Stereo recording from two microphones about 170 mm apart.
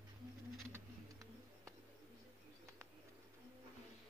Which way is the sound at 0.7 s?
20° right (ahead or behind).